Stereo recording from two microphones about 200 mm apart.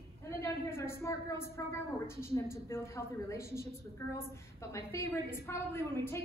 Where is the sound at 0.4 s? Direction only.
10° left (ahead or behind).